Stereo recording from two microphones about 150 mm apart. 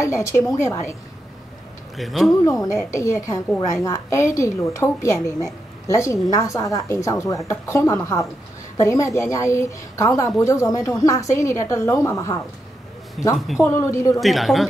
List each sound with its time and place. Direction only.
0.0 s a woman's voice: 20° left (ahead or behind)
2.0 s a woman's voice: centre (ahead or behind)
2.6 s a woman's voice: 20° left (ahead or behind)
13.2 s a woman's voice: centre (ahead or behind)
13.6 s a woman's voice: 15° left (ahead or behind)
14.2 s a woman's voice: centre (ahead or behind)